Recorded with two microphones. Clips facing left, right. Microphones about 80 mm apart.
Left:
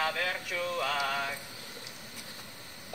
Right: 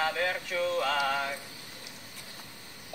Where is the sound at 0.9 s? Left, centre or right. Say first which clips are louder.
Right 3 dB; right.